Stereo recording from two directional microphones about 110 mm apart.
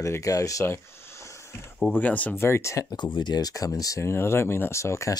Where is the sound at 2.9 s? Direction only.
45° left (ahead or behind); by 5.2 s 25° left (ahead or behind).